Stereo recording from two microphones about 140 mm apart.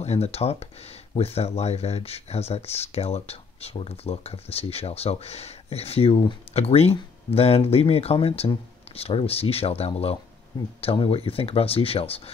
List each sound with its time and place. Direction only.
0.0 s speech: 50° left (ahead or behind)